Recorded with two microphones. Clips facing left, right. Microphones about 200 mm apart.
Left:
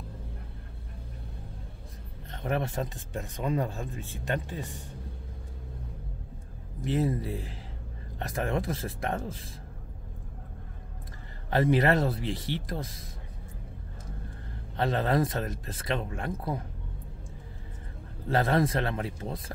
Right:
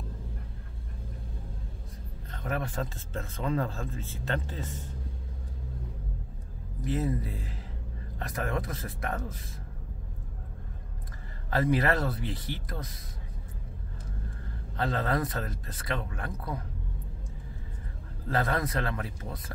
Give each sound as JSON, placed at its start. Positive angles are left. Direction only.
{"t": 2.3, "sound": "speech", "side_deg": 25}
{"t": 6.8, "sound": "speech", "side_deg": 25}
{"t": 8.2, "sound": "speech", "side_deg": 25}
{"t": 11.5, "sound": "speech", "side_deg": 25}
{"t": 14.8, "sound": "speech", "side_deg": 25}
{"t": 18.3, "sound": "speech", "side_deg": 25}